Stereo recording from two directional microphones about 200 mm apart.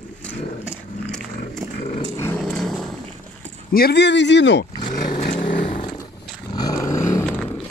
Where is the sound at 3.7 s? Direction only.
55° left (ahead or behind).